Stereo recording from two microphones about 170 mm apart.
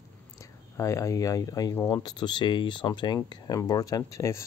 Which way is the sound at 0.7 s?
20° left (ahead or behind).